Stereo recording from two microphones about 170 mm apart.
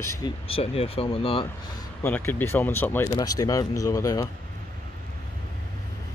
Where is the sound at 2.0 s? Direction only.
10° left (ahead or behind).